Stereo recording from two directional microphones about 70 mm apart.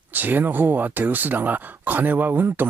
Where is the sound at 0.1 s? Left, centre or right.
Right.